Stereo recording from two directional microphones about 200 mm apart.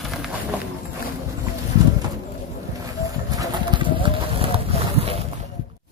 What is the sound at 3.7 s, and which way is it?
Clip-clop, 25° right (ahead or behind).